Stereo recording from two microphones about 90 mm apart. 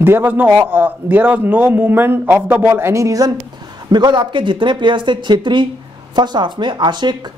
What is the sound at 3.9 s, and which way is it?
Speech, 55° right (ahead or behind).